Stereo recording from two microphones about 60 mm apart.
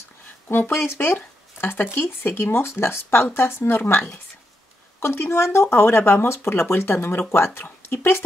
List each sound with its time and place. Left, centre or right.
0.5 s speech: left